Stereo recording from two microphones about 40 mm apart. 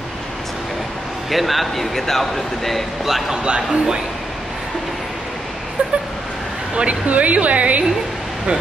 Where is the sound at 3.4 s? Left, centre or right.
Right.